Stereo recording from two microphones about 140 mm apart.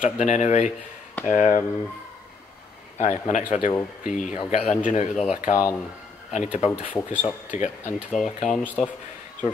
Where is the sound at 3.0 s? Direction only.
55° left (ahead or behind).